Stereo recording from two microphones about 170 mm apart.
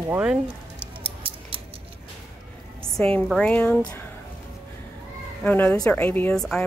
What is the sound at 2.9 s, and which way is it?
A woman's voice, 5° left (ahead or behind).